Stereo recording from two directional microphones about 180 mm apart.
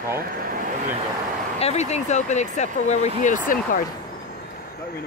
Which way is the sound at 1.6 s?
35° left (ahead or behind).